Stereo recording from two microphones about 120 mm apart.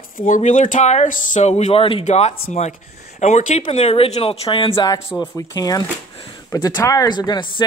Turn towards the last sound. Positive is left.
turn(degrees=35)  # may be behind; listen again after turning